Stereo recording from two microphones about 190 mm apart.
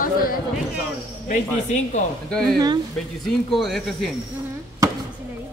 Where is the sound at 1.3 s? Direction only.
40° left (ahead or behind).